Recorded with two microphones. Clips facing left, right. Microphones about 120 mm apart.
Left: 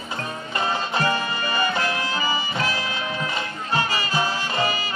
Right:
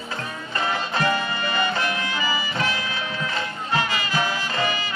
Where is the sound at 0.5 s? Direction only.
20° left (ahead or behind).